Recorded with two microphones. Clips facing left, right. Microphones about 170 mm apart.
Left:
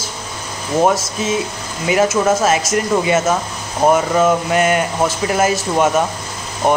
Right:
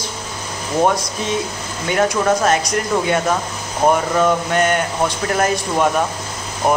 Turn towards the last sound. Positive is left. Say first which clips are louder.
# left 2 dB
turn(degrees=0)  # may be behind; listen again after turning